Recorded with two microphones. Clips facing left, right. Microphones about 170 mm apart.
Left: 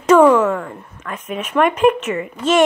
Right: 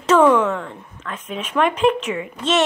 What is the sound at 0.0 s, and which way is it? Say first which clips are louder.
Speech: left 3 dB; 10° left (ahead or behind).